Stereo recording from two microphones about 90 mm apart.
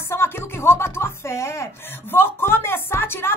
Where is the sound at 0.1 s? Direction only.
25° left (ahead or behind).